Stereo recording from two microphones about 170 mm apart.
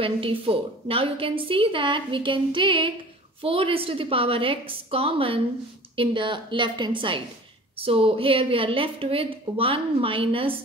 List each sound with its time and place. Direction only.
0.0 s a woman's voice: 30° right (ahead or behind)